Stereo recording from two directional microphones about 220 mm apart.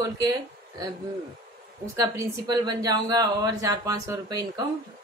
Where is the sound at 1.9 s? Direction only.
15° right (ahead or behind).